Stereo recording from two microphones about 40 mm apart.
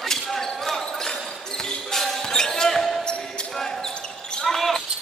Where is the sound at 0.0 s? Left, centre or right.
Centre.